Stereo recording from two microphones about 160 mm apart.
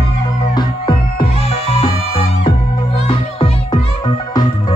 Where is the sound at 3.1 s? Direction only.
30° left (ahead or behind).